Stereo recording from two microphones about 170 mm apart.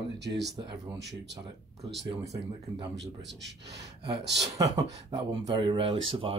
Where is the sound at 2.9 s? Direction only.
90° right.